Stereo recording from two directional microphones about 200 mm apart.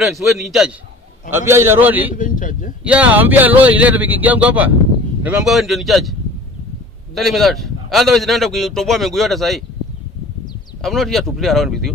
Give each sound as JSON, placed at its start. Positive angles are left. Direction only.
{"t": 0.0, "sound": "speech", "side_deg": 0}
{"t": 2.1, "sound": "a man's voice", "side_deg": 40}
{"t": 2.8, "sound": "speech", "side_deg": -5}
{"t": 7.2, "sound": "speech", "side_deg": 0}
{"t": 10.8, "sound": "speech", "side_deg": 0}